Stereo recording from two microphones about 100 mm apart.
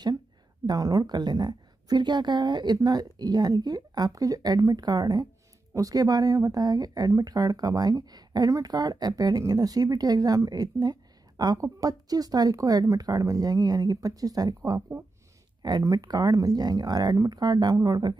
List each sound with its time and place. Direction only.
0.7 s a woman's voice: 35° right (ahead or behind)